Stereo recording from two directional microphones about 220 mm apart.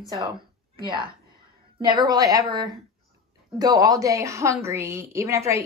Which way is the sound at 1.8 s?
20° right (ahead or behind).